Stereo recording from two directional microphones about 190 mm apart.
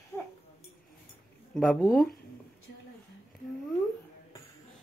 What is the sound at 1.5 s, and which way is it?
Speech, centre (ahead or behind).